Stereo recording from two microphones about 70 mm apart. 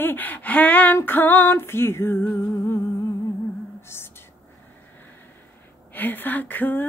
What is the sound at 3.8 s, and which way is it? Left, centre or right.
Whispering, left.